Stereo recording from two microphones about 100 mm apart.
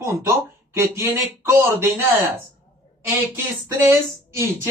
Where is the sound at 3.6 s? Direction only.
25° right (ahead or behind).